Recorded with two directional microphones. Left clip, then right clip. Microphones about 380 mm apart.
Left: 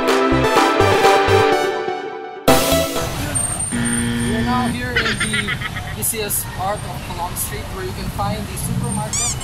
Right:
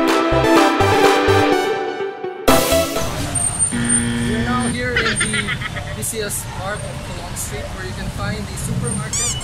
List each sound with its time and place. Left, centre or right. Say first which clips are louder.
0.0 s music: even; centre
3.7 s vehicle: left 1 dB; centre